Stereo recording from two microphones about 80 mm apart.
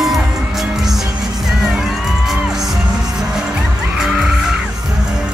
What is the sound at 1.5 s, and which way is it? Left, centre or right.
Music, centre.